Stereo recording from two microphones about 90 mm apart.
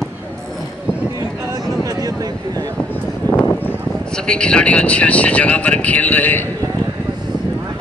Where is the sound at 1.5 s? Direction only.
40° right (ahead or behind).